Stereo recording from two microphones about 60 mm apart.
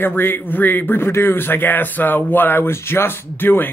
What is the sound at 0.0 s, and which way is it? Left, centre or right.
Speech, left.